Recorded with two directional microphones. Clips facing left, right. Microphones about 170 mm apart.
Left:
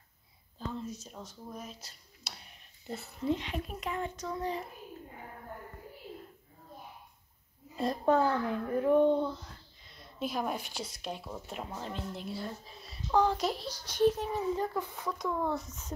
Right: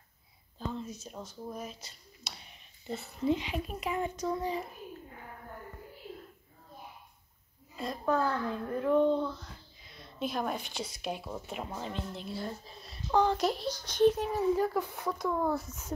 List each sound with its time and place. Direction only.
0.6 s a child's voice: centre (ahead or behind)
7.7 s a child's voice: 35° left (ahead or behind); by 9.3 s 15° left (ahead or behind)
9.4 s a child's voice: centre (ahead or behind)